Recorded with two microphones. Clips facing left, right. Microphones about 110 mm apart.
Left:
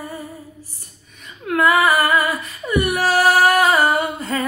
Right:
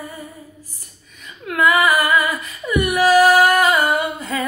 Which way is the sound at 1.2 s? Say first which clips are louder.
Left 1 dB; 35° left (ahead or behind).